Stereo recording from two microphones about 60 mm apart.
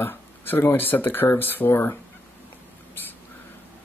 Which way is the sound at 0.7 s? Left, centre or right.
Left.